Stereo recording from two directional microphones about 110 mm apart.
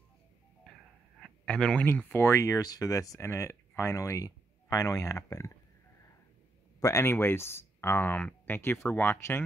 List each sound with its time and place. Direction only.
1.4 s speech: 10° left (ahead or behind)
2.2 s speech: 25° left (ahead or behind)
6.8 s speech: 25° left (ahead or behind)